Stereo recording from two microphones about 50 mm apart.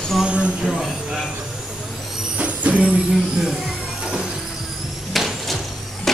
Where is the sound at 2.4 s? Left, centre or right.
Right.